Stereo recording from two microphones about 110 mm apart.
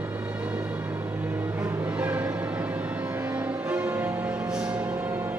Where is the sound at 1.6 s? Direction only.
15° right (ahead or behind).